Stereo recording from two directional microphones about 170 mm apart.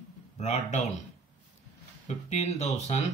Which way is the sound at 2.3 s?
40° left (ahead or behind).